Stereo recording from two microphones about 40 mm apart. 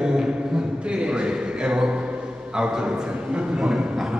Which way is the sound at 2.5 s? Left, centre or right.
Right.